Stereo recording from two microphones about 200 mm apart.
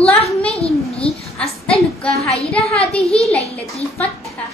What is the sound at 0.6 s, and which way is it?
Speech, 30° left (ahead or behind).